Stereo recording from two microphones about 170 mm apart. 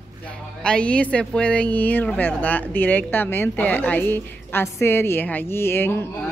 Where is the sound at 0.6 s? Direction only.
5° left (ahead or behind).